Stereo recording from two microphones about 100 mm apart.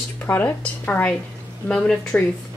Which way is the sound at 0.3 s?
20° left (ahead or behind).